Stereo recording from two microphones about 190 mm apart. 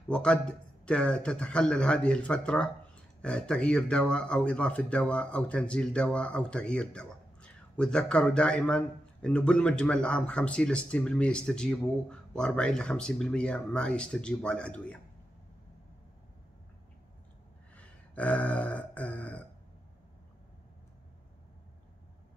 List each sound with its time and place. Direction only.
0.1 s speech: 5° left (ahead or behind)
17.7 s burping: 5° left (ahead or behind)